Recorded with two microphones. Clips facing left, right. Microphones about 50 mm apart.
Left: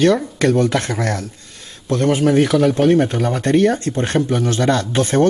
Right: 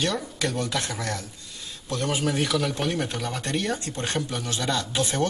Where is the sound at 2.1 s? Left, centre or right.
Left.